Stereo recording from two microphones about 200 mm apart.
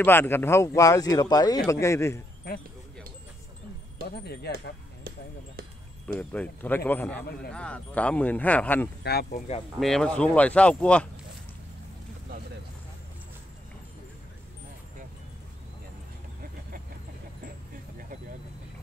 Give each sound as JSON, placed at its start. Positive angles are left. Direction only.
{"t": 0.0, "sound": "speech", "side_deg": 10}
{"t": 4.1, "sound": "speech", "side_deg": 55}
{"t": 6.1, "sound": "speech", "side_deg": 5}
{"t": 9.0, "sound": "speech", "side_deg": 55}
{"t": 9.8, "sound": "speech", "side_deg": 0}